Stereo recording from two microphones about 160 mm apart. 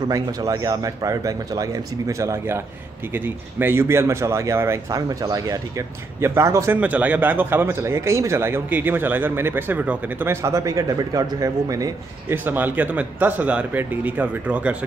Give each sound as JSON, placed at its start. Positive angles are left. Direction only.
{"t": 0.1, "sound": "a man's voice", "side_deg": -20}